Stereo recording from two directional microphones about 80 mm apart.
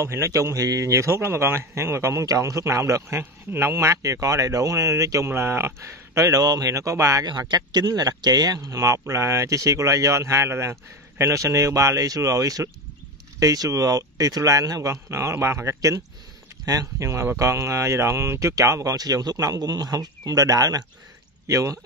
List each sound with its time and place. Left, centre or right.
0.0 s speech: right
7.2 s speech: right
17.0 s speech: right